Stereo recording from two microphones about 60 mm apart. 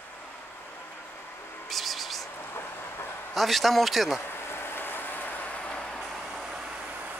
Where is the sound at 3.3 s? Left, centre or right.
Centre.